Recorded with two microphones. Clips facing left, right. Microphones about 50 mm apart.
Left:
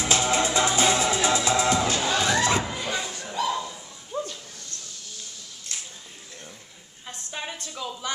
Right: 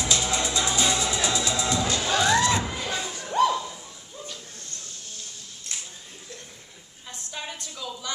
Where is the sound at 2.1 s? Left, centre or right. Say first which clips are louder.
Right 3 dB; left.